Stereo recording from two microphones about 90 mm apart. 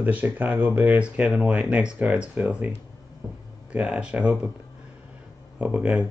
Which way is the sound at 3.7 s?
15° right (ahead or behind).